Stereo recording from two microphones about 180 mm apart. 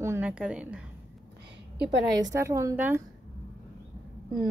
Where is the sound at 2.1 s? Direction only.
20° right (ahead or behind).